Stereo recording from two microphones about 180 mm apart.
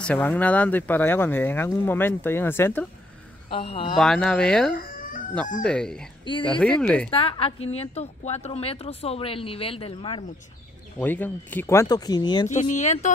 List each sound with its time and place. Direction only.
0.0 s speech: 10° left (ahead or behind)
3.4 s speech: 30° left (ahead or behind)
3.9 s speech: centre (ahead or behind)
7.1 s speech: 30° left (ahead or behind)
11.0 s speech: 10° left (ahead or behind)
12.4 s speech: 40° left (ahead or behind)